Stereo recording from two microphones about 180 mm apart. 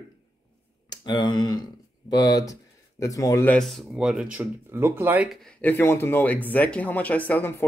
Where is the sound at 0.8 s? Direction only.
25° left (ahead or behind).